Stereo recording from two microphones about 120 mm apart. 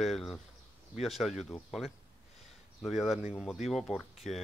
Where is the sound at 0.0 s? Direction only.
Centre (ahead or behind).